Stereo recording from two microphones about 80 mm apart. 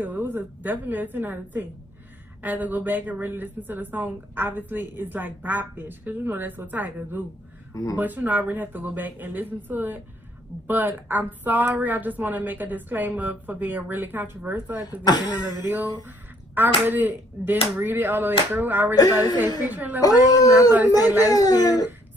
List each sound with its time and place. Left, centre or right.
0.0 s a woman's voice: right
7.7 s speech: left
8.0 s a woman's voice: right
14.8 s speech: left
15.7 s a woman's voice: right
18.9 s speech: left
19.7 s a woman's voice: right
20.0 s speech: left